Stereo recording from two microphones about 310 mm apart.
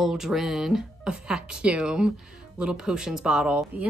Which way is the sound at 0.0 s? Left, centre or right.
Centre.